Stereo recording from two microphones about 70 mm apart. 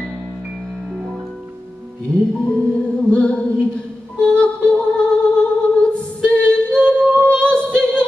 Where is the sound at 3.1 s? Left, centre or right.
Centre.